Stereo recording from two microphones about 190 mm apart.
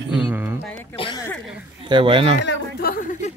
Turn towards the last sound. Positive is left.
turn(degrees=45)  # may be behind; listen again after turning